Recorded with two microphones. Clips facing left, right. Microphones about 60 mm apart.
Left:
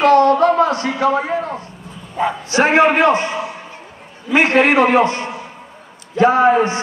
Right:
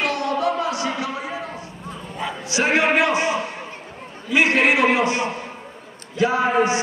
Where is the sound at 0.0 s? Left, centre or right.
Left.